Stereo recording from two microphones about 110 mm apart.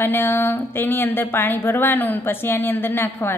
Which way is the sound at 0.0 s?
20° left (ahead or behind).